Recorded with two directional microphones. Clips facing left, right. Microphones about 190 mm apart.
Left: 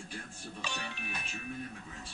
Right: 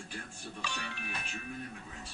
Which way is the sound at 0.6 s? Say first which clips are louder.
Even; 20° left (ahead or behind).